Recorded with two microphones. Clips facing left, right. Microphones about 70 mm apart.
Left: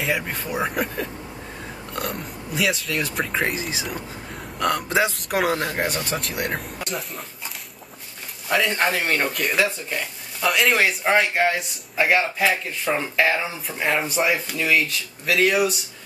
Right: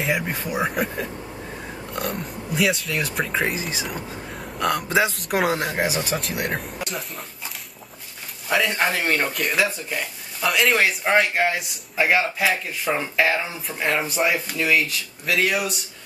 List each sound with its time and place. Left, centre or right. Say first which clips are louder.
0.0 s speech: right 1 dB; centre
8.5 s speech: even; centre